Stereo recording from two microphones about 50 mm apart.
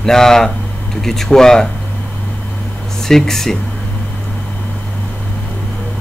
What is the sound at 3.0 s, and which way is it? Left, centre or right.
Speech, centre.